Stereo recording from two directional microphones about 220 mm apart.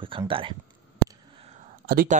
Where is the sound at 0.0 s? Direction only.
25° right (ahead or behind).